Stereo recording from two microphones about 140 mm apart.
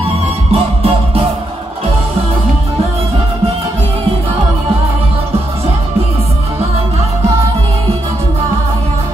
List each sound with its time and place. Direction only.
0.5 s music: 45° right (ahead or behind)